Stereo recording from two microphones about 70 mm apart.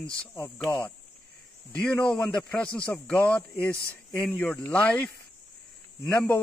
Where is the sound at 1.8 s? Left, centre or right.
Centre.